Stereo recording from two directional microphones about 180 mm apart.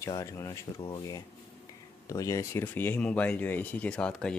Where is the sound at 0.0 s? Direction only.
15° left (ahead or behind).